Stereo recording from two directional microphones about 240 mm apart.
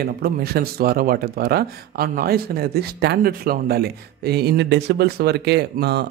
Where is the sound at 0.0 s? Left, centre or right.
Right.